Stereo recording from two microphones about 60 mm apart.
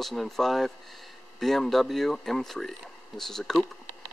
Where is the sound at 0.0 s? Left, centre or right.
Centre.